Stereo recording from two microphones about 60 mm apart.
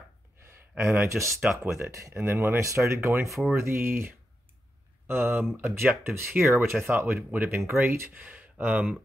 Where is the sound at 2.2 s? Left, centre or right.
Right.